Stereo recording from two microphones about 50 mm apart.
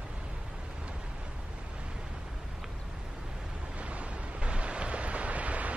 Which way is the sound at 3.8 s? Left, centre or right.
Right.